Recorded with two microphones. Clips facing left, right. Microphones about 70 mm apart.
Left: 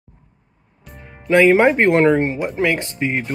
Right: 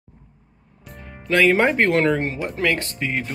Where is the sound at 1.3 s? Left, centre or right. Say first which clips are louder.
Left 5 dB; centre.